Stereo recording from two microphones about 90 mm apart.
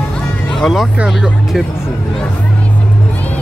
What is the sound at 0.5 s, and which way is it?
Speech, centre (ahead or behind).